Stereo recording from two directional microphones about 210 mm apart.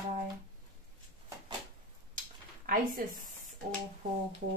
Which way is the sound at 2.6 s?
40° right (ahead or behind).